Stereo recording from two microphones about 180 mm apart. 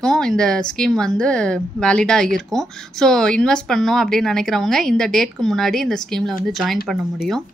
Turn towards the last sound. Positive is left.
turn(degrees=0)  # may be behind; listen again after turning